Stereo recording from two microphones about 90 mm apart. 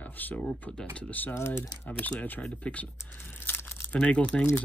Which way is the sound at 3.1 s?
20° left (ahead or behind).